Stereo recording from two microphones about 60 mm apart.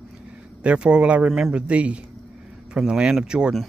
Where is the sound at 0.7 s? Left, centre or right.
Centre.